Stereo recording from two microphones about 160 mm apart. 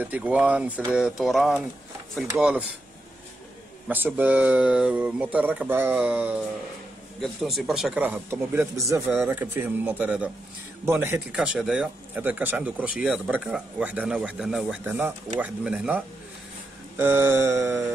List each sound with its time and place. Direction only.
0.0 s speech: 10° right (ahead or behind)
3.9 s speech: 10° right (ahead or behind)
9.1 s speech: 5° right (ahead or behind)
11.3 s speech: 5° right (ahead or behind)